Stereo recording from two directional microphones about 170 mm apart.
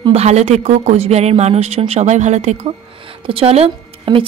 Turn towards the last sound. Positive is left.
turn(degrees=-30)  # may be behind; listen again after turning